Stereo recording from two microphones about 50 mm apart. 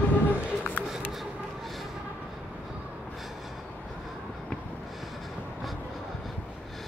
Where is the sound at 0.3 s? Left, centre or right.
Left.